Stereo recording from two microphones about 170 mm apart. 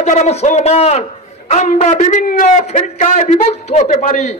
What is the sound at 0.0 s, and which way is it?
A man's voice, 40° left (ahead or behind).